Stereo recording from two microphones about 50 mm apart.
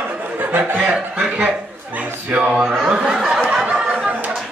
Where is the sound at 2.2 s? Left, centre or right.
Right.